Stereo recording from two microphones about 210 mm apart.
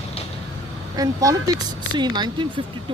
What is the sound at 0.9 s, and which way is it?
Speech, 15° right (ahead or behind).